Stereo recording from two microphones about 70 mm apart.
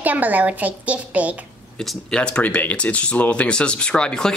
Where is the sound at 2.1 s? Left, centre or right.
Centre.